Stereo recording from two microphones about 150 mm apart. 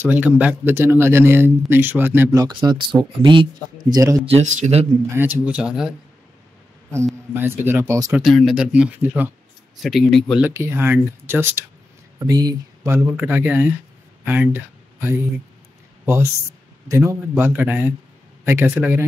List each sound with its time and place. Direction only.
0.0 s speech: 10° right (ahead or behind)
2.4 s speech: 30° right (ahead or behind)
4.3 s speech: 50° right (ahead or behind)
5.1 s speech: 15° right (ahead or behind)
7.3 s speech: 15° right (ahead or behind)
8.1 s speech: centre (ahead or behind)
10.5 s speech: 15° right (ahead or behind)
16.8 s speech: 20° right (ahead or behind)
17.5 s speech: 10° right (ahead or behind)